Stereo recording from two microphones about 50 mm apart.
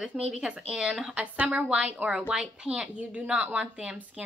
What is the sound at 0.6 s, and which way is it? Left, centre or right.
Speech, centre.